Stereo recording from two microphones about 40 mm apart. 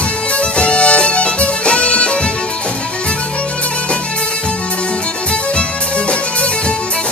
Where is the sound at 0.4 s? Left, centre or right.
Left.